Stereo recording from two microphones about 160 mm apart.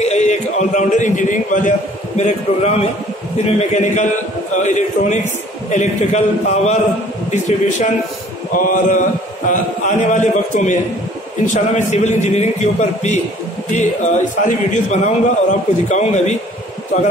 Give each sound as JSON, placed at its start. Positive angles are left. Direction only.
{"t": 0.0, "sound": "a man's voice", "side_deg": 45}
{"t": 8.5, "sound": "mantra", "side_deg": 55}
{"t": 9.5, "sound": "a man's voice", "side_deg": 50}